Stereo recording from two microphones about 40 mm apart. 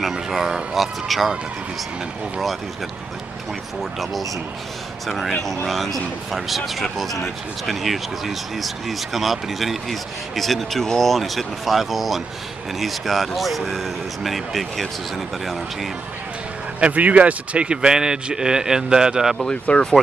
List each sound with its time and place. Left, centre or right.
0.1 s speech: centre
5.0 s speech: centre
16.8 s speech: right; by 19.3 s centre
19.7 s speech: left